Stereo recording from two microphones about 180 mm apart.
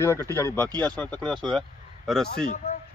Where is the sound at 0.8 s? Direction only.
10° left (ahead or behind).